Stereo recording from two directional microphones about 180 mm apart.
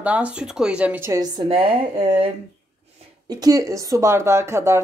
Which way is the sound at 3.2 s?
20° right (ahead or behind).